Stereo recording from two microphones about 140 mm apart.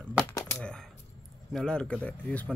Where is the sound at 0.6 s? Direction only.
5° left (ahead or behind).